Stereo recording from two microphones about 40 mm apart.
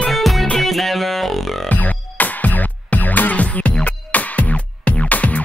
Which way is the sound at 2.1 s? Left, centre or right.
Left.